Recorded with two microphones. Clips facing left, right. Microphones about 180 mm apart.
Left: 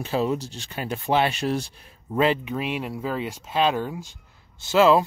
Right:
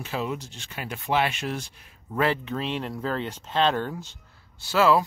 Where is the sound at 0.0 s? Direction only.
35° left (ahead or behind).